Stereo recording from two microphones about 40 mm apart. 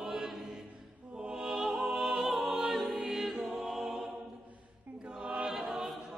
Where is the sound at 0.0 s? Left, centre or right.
Centre.